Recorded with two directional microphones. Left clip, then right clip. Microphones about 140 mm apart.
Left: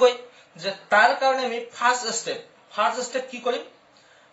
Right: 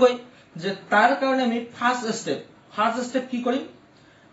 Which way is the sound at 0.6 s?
25° left (ahead or behind).